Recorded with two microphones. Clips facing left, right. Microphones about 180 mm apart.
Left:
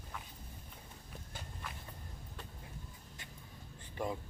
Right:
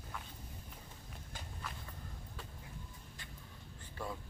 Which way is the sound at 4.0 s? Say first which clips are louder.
Left 5 dB; 15° left (ahead or behind).